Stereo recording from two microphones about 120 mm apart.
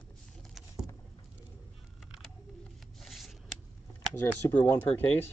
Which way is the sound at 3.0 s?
Centre (ahead or behind).